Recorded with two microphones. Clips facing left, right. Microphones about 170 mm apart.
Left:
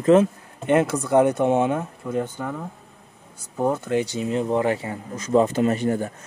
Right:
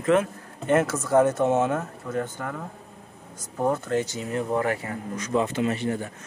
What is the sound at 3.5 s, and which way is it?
Speech, 10° left (ahead or behind).